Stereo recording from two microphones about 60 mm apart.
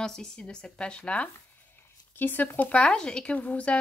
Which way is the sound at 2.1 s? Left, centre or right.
Left.